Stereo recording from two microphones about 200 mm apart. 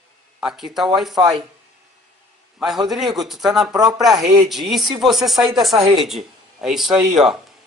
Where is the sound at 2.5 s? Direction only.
Centre (ahead or behind).